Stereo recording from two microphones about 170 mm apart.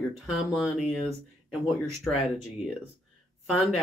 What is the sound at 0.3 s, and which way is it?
Speech, centre (ahead or behind).